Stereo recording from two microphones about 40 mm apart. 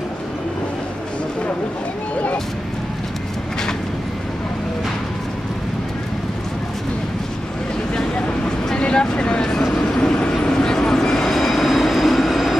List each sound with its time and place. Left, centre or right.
8.7 s vehicle: left
9.6 s vehicle: centre
9.8 s vehicle: centre
10.4 s train: centre